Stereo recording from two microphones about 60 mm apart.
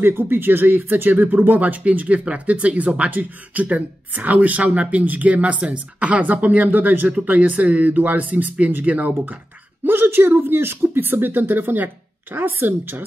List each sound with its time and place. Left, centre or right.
0.0 s speech: right
9.8 s speech: right